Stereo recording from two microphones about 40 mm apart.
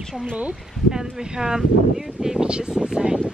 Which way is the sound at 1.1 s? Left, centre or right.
Centre.